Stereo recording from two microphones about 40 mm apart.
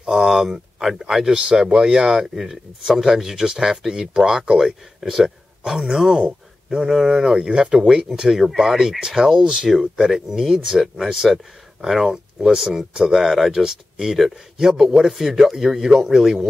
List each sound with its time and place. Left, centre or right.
0.0 s speech: centre
7.1 s speech: centre
7.3 s speech: right
8.1 s speech: centre